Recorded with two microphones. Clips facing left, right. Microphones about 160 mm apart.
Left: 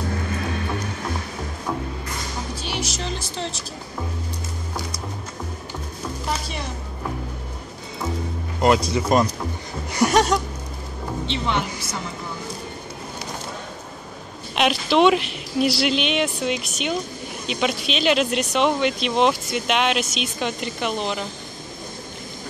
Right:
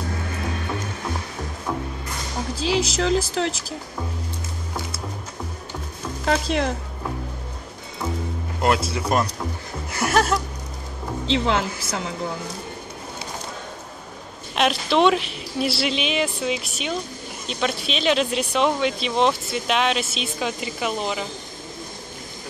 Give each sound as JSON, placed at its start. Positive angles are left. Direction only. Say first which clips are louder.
{"t": 2.6, "sound": "music", "louder": "right 10 dB", "side_deg": -90}
{"t": 6.2, "sound": "music", "louder": "right 9 dB", "side_deg": -90}
{"t": 8.5, "sound": "speech", "louder": "left 3 dB", "side_deg": 0}
{"t": 9.2, "sound": "a sound", "louder": "left 3 dB", "side_deg": 0}
{"t": 11.2, "sound": "speech", "louder": "right 4 dB", "side_deg": -90}
{"t": 14.5, "sound": "speech", "louder": "left 1 dB", "side_deg": 0}